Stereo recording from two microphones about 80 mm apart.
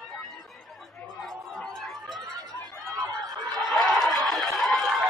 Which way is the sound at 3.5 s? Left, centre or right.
Centre.